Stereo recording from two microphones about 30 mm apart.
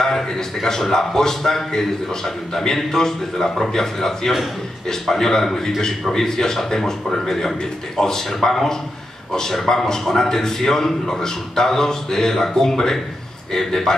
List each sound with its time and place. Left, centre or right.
0.0 s a man's voice: centre